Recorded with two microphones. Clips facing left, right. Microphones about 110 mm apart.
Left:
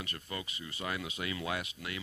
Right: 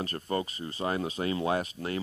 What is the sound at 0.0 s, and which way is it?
Speech, 40° right (ahead or behind).